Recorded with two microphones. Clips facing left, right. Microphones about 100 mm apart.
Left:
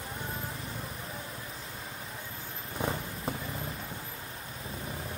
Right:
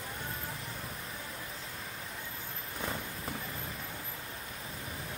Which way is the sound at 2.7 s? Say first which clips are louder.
Left 5 dB; 30° left (ahead or behind).